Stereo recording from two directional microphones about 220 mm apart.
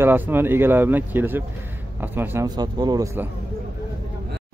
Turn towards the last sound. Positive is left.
turn(degrees=-15)  # may be behind; listen again after turning